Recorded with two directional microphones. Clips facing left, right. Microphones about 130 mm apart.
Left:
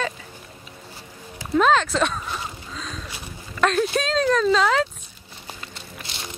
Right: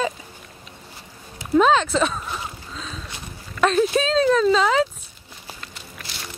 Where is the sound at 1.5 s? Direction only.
Centre (ahead or behind).